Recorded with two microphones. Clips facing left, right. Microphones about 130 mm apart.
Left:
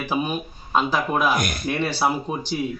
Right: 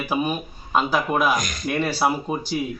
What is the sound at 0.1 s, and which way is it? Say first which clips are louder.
Speech: right 1 dB; 5° right (ahead or behind).